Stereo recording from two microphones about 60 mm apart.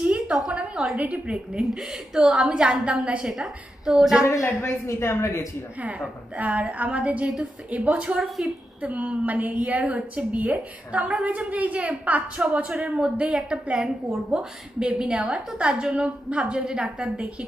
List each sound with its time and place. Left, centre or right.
0.5 s a sound: centre
0.9 s a woman's voice: right
1.6 s a woman's voice: centre
3.3 s a woman's voice: centre
4.2 s a woman's voice: left
5.9 s a woman's voice: right